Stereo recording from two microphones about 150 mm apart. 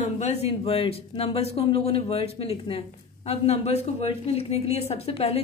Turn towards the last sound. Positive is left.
turn(degrees=45)  # may be behind; listen again after turning